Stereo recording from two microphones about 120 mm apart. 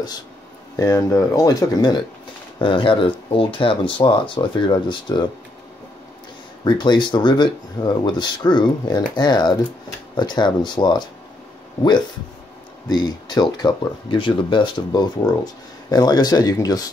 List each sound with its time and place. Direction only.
0.7 s speech: 30° left (ahead or behind)
2.6 s speech: 50° left (ahead or behind)
6.6 s speech: 40° left (ahead or behind)
12.8 s speech: 35° left (ahead or behind)